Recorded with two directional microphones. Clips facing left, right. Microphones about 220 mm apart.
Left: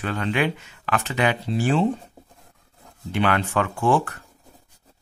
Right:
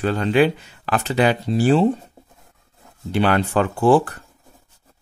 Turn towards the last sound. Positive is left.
turn(degrees=-35)  # may be behind; listen again after turning